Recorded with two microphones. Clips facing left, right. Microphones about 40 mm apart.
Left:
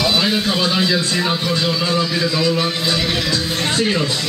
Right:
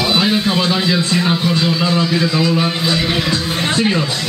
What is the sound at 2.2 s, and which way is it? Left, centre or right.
Speech, right.